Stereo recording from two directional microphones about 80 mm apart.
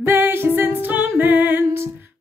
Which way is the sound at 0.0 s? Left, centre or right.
Right.